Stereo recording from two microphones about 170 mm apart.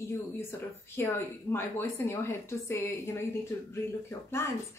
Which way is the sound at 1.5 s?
15° left (ahead or behind).